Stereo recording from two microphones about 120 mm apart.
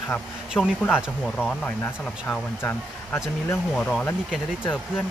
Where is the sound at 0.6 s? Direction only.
15° left (ahead or behind).